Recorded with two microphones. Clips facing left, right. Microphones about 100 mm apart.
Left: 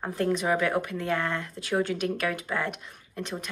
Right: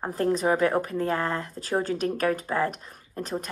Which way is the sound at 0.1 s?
35° right (ahead or behind).